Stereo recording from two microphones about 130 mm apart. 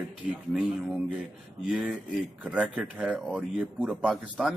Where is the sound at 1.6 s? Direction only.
10° right (ahead or behind).